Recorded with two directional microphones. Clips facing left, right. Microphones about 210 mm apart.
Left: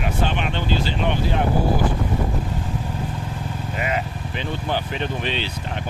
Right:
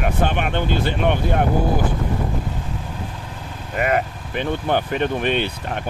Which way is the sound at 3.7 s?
55° right (ahead or behind).